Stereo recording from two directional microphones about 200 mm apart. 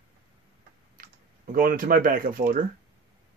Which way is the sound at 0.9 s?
45° right (ahead or behind).